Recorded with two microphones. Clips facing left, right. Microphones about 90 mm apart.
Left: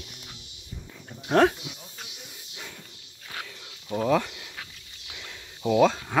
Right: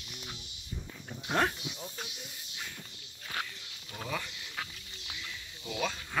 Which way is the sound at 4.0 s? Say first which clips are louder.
Left 14 dB; 80° left.